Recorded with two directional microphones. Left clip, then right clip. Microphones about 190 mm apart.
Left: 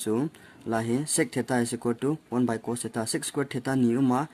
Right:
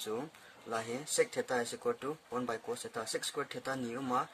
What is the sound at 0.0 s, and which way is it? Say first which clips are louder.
Speech: left 10 dB; 40° left (ahead or behind).